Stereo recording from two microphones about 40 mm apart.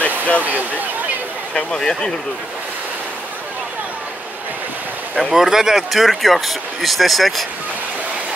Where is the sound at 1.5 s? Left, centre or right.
Centre.